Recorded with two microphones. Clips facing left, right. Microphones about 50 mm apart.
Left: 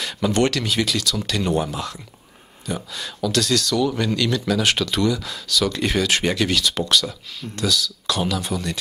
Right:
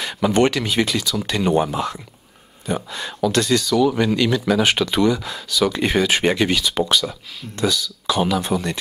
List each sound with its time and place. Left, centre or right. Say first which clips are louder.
0.0 s speech: right 3 dB; centre